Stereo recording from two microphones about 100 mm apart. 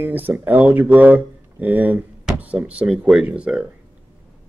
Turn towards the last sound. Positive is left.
turn(degrees=-10)  # may be behind; listen again after turning